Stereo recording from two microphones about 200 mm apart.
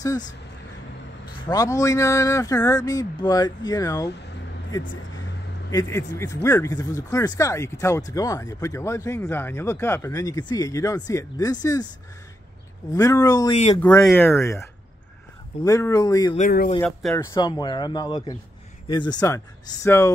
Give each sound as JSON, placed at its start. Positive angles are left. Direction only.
{"t": 1.5, "sound": "speech", "side_deg": 15}
{"t": 5.7, "sound": "speech", "side_deg": 15}
{"t": 12.9, "sound": "speech", "side_deg": 15}
{"t": 13.7, "sound": "speech", "side_deg": 5}
{"t": 15.6, "sound": "speech", "side_deg": 15}
{"t": 16.3, "sound": "speech", "side_deg": 40}
{"t": 16.8, "sound": "speech", "side_deg": 10}